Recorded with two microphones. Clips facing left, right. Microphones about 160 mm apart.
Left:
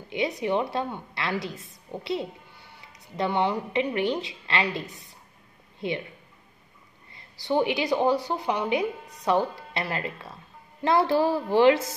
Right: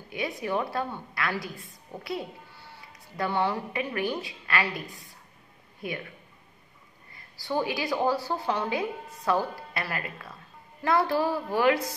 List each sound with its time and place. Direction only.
0.1 s a woman's voice: 20° left (ahead or behind)
7.2 s a woman's voice: 20° left (ahead or behind)